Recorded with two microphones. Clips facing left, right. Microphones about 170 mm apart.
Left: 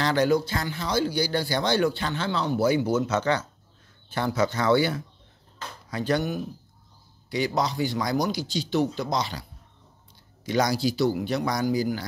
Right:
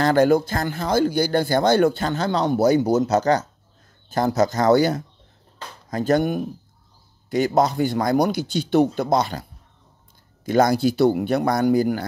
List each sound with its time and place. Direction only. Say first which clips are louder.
0.0 s speech: right 6 dB; 50° right (ahead or behind)